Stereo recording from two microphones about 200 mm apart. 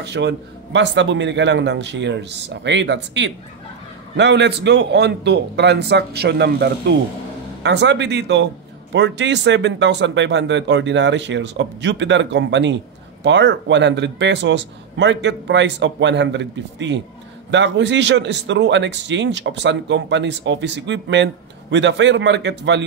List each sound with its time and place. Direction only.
0.0 s speech: 60° right (ahead or behind)